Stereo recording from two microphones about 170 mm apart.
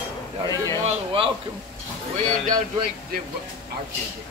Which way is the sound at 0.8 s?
30° right (ahead or behind).